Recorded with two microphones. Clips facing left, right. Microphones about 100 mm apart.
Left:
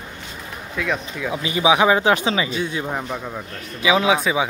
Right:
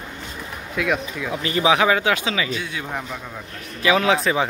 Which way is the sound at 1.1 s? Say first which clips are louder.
Even; 15° left (ahead or behind).